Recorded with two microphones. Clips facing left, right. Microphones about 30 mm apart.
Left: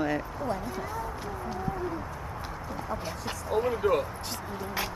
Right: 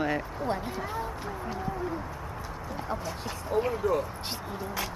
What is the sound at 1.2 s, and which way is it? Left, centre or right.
Speech, centre.